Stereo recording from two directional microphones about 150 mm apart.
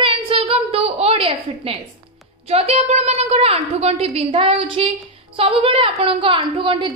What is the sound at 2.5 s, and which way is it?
A woman's voice, 40° right (ahead or behind).